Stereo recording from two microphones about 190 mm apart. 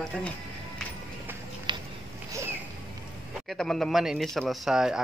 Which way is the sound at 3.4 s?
Centre (ahead or behind).